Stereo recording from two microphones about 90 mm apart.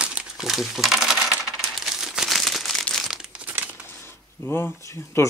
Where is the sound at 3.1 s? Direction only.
10° right (ahead or behind).